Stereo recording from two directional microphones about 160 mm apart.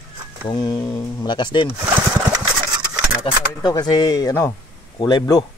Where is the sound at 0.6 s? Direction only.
25° left (ahead or behind).